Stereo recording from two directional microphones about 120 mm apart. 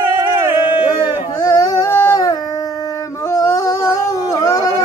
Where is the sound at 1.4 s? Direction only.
30° left (ahead or behind).